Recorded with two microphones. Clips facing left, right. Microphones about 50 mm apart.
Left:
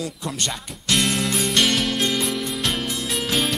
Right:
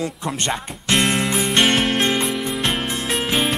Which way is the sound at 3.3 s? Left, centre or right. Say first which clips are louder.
Right 2 dB; right.